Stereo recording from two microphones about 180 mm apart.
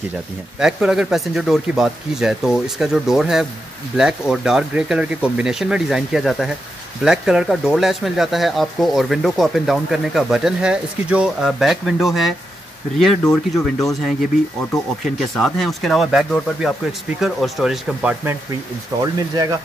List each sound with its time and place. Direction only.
0.6 s speech: 5° right (ahead or behind)
18.9 s speech: 20° right (ahead or behind)